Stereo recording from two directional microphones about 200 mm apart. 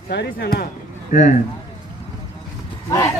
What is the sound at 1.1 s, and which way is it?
Speech, 35° left (ahead or behind).